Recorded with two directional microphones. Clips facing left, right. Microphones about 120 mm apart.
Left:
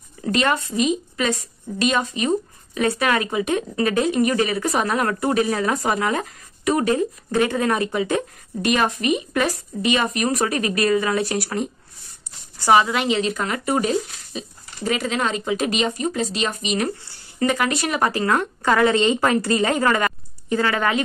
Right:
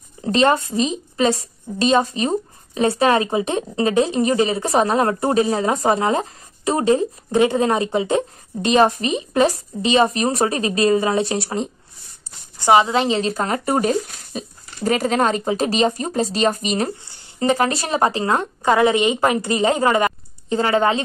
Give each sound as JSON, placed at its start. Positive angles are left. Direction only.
{"t": 0.2, "sound": "a woman's voice", "side_deg": -30}